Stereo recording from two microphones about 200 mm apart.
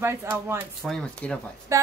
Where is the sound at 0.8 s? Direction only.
5° left (ahead or behind).